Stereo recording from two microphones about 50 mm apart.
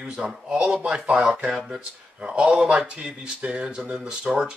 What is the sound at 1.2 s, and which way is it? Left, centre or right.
Speech, centre.